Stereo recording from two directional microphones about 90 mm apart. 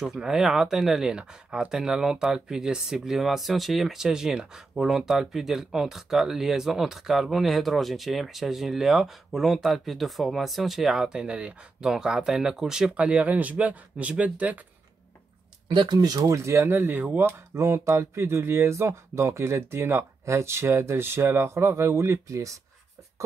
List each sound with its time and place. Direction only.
0.0 s speech: 5° right (ahead or behind)
15.7 s speech: 60° right (ahead or behind)
16.4 s speech: 30° right (ahead or behind)
17.6 s speech: 30° right (ahead or behind)